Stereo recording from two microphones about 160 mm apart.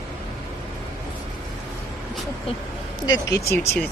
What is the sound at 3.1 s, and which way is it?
Speech, 20° left (ahead or behind).